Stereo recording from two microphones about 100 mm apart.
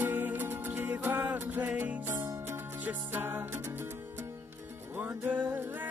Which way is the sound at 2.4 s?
20° right (ahead or behind).